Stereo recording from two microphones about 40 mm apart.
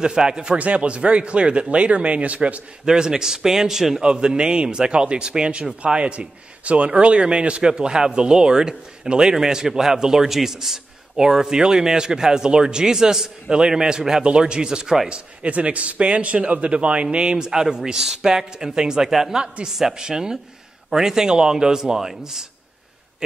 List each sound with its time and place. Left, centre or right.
0.0 s speech: right
0.6 s speech: right
2.8 s a man's voice: centre
4.0 s a man's voice: centre